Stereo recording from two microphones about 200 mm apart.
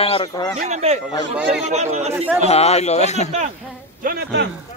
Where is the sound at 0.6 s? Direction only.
35° right (ahead or behind).